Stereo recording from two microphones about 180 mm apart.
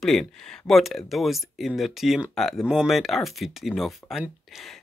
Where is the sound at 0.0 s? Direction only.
Centre (ahead or behind).